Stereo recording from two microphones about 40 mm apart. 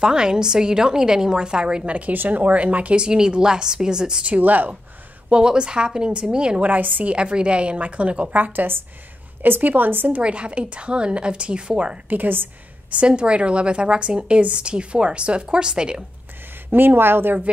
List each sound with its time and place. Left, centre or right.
0.0 s a woman's voice: centre
2.1 s speech: right
3.0 s a woman's voice: right
4.2 s a woman's voice: right
5.3 s a woman's voice: right
6.6 s a woman's voice: right
7.1 s a woman's voice: right
8.5 s speech: right
9.4 s a woman's voice: right
10.2 s a woman's voice: right
12.1 s a woman's voice: right
12.9 s a woman's voice: right
16.7 s speech: right